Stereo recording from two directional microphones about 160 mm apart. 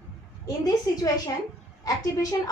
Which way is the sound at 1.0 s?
20° left (ahead or behind).